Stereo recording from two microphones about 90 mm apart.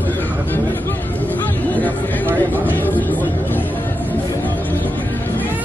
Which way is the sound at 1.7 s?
20° left (ahead or behind).